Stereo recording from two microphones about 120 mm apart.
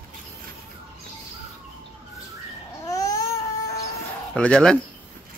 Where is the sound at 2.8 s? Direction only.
30° left (ahead or behind).